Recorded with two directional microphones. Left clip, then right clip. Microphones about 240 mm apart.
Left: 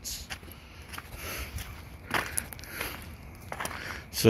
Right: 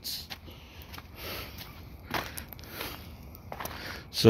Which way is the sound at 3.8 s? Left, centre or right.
Centre.